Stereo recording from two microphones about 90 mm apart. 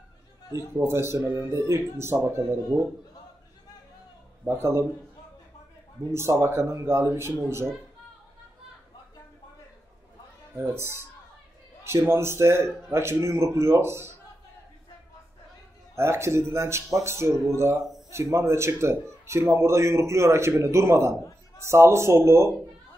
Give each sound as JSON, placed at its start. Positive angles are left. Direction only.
{"t": 0.7, "sound": "speech", "side_deg": -30}
{"t": 4.5, "sound": "speech", "side_deg": -30}
{"t": 6.1, "sound": "speech", "side_deg": -30}
{"t": 10.6, "sound": "speech", "side_deg": -25}
{"t": 16.0, "sound": "speech", "side_deg": -30}